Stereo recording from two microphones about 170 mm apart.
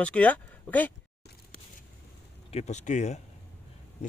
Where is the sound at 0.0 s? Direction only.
10° left (ahead or behind).